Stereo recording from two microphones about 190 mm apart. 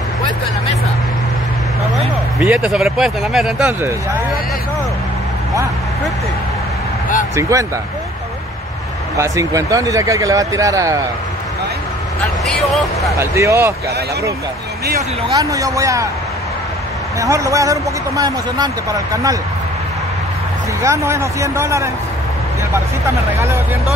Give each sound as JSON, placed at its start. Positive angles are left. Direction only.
{"t": 2.4, "sound": "speech", "side_deg": -5}
{"t": 7.3, "sound": "speech", "side_deg": -15}
{"t": 9.1, "sound": "speech", "side_deg": -15}
{"t": 12.4, "sound": "speech", "side_deg": 0}
{"t": 13.2, "sound": "speech", "side_deg": -15}
{"t": 15.0, "sound": "speech", "side_deg": -20}
{"t": 17.2, "sound": "speech", "side_deg": -15}
{"t": 20.8, "sound": "speech", "side_deg": -15}